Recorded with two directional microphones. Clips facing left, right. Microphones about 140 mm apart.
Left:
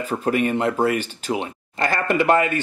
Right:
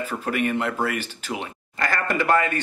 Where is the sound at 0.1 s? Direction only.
30° left (ahead or behind).